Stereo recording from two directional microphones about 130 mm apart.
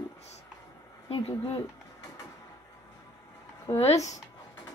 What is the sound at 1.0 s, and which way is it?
Speech, 45° left (ahead or behind).